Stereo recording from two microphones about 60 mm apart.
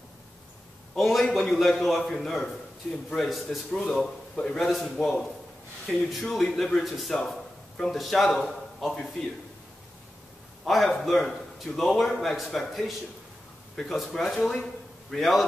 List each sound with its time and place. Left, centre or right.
0.9 s a man's voice: centre
10.6 s a man's voice: centre